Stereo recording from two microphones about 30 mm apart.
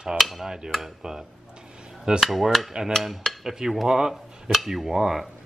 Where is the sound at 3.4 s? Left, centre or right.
Centre.